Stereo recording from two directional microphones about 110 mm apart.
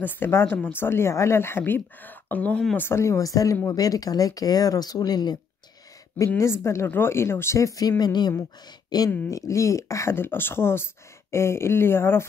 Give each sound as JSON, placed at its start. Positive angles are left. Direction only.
{"t": 0.0, "sound": "speech", "side_deg": 20}
{"t": 6.1, "sound": "speech", "side_deg": 25}
{"t": 9.3, "sound": "speech", "side_deg": 30}